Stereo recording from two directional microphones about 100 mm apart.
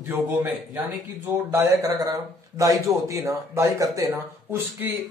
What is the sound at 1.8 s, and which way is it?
Speech, 35° right (ahead or behind).